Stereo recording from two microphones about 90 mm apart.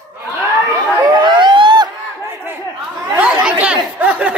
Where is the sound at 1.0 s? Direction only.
55° right (ahead or behind).